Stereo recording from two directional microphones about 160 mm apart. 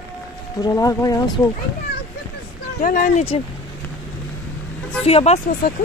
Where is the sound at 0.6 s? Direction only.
20° left (ahead or behind).